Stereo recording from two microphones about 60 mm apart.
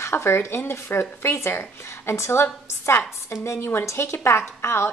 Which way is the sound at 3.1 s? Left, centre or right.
Left.